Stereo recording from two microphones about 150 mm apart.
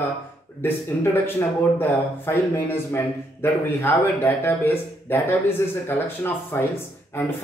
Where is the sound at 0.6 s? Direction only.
15° left (ahead or behind).